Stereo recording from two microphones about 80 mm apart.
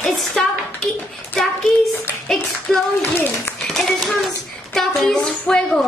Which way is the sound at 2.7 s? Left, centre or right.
Centre.